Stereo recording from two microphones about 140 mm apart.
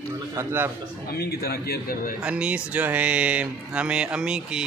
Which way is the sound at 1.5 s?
90° left.